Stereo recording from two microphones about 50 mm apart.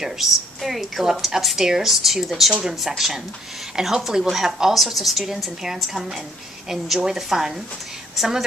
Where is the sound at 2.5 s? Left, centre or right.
Centre.